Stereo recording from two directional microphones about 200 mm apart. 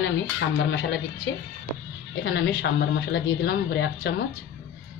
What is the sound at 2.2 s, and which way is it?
A woman's voice, 60° left (ahead or behind).